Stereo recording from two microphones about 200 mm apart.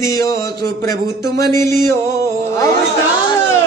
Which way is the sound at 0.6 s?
50° right (ahead or behind).